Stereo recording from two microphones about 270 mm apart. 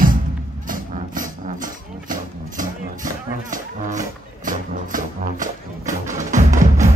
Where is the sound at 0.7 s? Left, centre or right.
Right.